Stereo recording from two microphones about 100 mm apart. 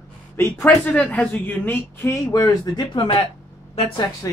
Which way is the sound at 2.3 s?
45° left (ahead or behind).